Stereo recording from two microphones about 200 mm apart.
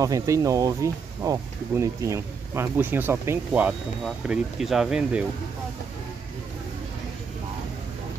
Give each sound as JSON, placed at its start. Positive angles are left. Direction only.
{"t": 0.0, "sound": "speech", "side_deg": -15}